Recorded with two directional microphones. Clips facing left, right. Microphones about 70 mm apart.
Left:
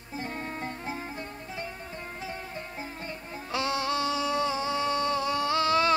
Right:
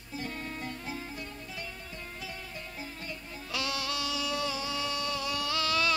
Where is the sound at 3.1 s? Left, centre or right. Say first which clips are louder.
Left 4 dB; left.